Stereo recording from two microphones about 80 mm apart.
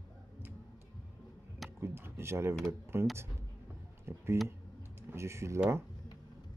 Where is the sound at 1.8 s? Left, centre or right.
Right.